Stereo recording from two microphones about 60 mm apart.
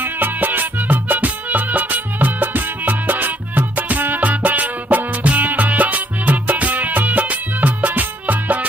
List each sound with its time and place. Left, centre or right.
0.0 s music: right